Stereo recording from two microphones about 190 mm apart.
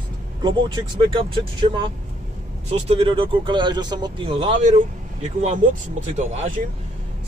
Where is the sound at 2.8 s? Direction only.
30° right (ahead or behind).